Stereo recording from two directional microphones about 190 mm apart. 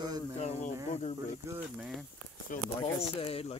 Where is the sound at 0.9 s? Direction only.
35° left (ahead or behind).